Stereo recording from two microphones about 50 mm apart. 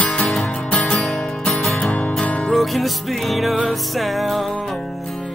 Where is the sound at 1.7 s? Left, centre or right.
Left.